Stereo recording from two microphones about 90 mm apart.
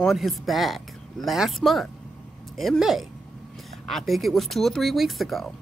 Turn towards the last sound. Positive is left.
turn(degrees=0)  # may be behind; listen again after turning